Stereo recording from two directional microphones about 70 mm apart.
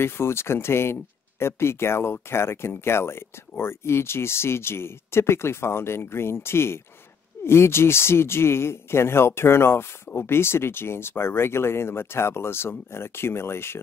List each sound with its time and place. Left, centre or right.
0.0 s speech: left